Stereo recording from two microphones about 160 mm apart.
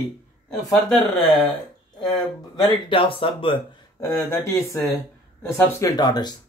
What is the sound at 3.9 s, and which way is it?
Speech, 20° left (ahead or behind).